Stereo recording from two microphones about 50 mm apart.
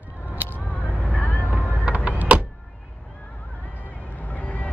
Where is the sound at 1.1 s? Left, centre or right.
Left.